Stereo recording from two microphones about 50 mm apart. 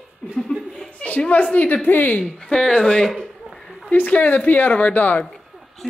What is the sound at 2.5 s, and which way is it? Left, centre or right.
Speech, centre.